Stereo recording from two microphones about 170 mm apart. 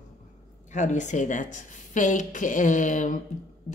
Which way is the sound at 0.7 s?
45° left (ahead or behind).